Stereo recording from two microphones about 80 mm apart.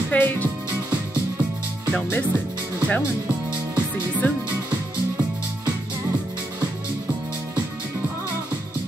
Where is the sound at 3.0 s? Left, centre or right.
Centre.